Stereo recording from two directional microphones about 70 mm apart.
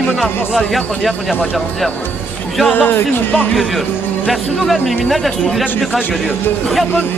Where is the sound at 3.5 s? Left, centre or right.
Centre.